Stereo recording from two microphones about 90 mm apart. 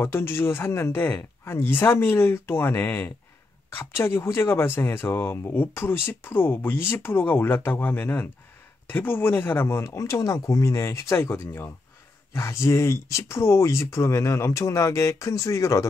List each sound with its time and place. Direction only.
0.0 s speech: 25° left (ahead or behind)